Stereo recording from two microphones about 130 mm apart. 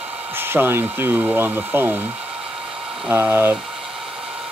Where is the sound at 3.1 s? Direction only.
20° right (ahead or behind).